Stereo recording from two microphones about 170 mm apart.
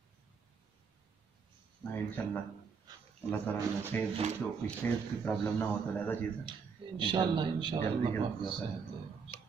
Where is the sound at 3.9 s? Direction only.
10° left (ahead or behind).